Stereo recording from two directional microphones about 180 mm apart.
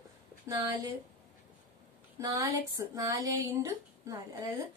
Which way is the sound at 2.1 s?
20° right (ahead or behind).